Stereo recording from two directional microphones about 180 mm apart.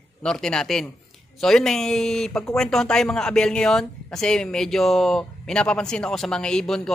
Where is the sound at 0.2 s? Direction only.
5° left (ahead or behind).